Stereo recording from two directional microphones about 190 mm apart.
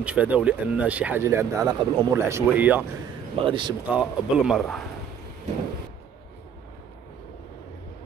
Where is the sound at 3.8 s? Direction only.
5° right (ahead or behind).